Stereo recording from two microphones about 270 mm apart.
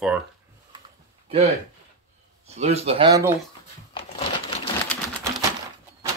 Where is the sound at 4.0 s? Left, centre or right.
Left.